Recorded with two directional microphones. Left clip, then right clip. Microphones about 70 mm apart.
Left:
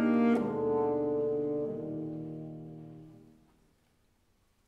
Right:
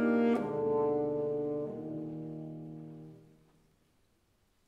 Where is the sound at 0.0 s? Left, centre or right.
Left.